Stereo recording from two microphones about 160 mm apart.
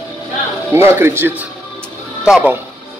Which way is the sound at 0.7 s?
15° right (ahead or behind).